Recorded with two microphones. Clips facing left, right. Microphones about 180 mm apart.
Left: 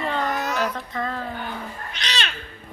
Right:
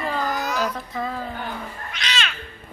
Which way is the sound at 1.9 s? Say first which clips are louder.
Right 1 dB; 35° left (ahead or behind).